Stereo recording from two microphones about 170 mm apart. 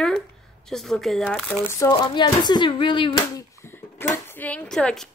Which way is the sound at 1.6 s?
15° left (ahead or behind).